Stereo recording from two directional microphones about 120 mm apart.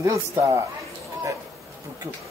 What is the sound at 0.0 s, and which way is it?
Speech, 25° right (ahead or behind).